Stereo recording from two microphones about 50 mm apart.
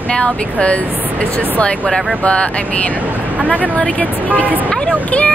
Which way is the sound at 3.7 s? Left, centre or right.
Left.